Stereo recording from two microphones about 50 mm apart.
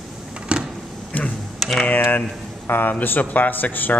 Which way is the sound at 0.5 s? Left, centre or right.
Centre.